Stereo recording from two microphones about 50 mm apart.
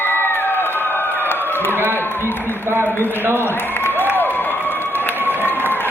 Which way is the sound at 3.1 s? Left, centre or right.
Right.